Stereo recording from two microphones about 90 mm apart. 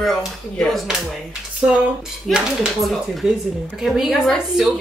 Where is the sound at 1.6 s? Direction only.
20° right (ahead or behind).